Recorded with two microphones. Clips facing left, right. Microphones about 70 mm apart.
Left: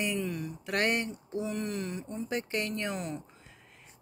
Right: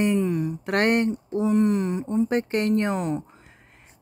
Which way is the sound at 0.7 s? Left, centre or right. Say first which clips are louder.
Right 8 dB; right.